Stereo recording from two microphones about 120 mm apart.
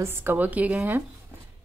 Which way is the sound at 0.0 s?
20° right (ahead or behind).